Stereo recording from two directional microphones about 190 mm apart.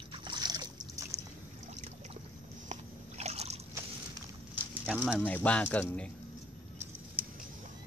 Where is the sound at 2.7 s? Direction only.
35° right (ahead or behind).